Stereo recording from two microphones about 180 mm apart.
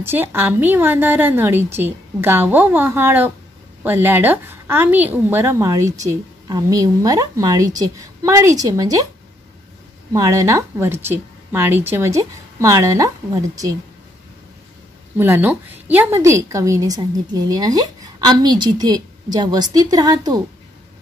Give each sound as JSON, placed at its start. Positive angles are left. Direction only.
{"t": 0.0, "sound": "a woman's voice", "side_deg": -10}
{"t": 10.1, "sound": "a woman's voice", "side_deg": -15}
{"t": 15.1, "sound": "a woman's voice", "side_deg": -10}